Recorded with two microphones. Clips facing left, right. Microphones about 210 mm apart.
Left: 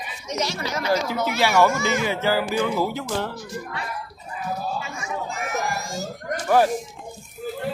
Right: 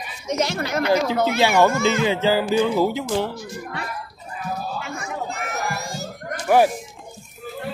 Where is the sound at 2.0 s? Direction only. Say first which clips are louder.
Right 3 dB; 20° right (ahead or behind).